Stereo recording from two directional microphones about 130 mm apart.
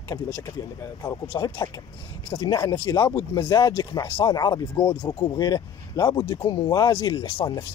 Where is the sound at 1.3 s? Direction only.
30° left (ahead or behind).